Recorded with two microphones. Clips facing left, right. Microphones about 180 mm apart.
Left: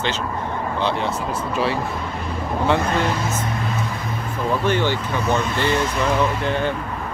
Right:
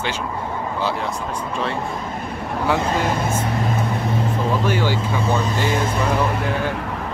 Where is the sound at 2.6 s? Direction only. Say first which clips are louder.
Left 1 dB; 5° right (ahead or behind).